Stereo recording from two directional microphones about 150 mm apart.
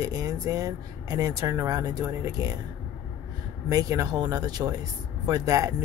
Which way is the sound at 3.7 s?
25° right (ahead or behind).